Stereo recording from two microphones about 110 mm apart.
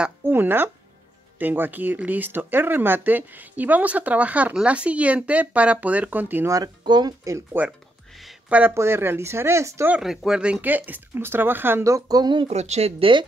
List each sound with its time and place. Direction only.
0.2 s speech: 20° right (ahead or behind)
6.8 s speech: 40° right (ahead or behind)
8.5 s speech: 15° right (ahead or behind)
9.8 s speech: 5° right (ahead or behind); by 12.4 s 35° right (ahead or behind)
12.4 s speech: 75° right (ahead or behind)